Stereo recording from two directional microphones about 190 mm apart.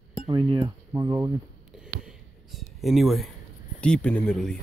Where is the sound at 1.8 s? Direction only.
Centre (ahead or behind).